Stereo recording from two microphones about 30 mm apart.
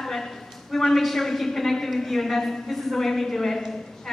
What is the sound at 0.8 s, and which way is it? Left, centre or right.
A woman's voice, centre.